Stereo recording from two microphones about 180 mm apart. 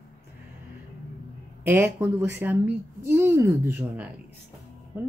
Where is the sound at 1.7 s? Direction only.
10° right (ahead or behind).